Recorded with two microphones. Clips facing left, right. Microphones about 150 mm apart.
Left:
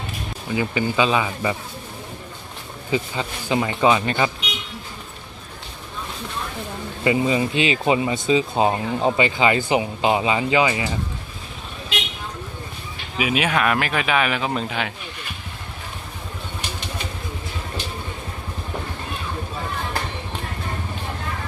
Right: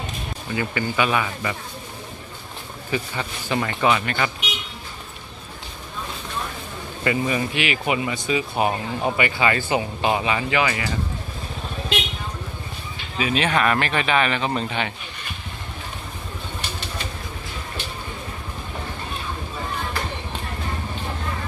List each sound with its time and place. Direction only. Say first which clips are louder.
0.5 s speech: left 3 dB; 15° left (ahead or behind)
2.9 s speech: left 3 dB; 20° left (ahead or behind)
7.1 s speech: left 3 dB; 20° left (ahead or behind)
13.2 s speech: even; 10° left (ahead or behind)